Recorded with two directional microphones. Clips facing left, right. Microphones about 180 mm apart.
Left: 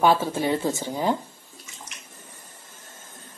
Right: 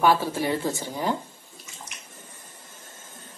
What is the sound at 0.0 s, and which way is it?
Speech, 20° left (ahead or behind).